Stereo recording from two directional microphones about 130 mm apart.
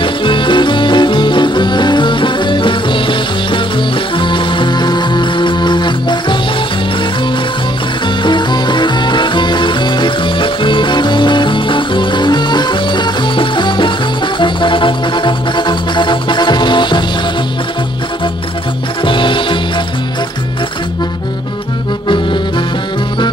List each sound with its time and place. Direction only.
0.0 s music: 40° left (ahead or behind)
8.2 s music: 35° left (ahead or behind)
19.0 s music: 40° left (ahead or behind)
22.0 s music: 40° left (ahead or behind)